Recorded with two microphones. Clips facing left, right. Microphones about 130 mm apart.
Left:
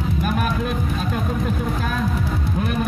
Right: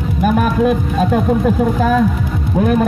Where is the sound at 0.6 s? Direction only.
70° right (ahead or behind).